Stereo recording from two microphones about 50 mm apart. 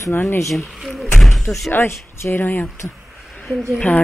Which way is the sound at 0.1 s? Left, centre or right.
Left.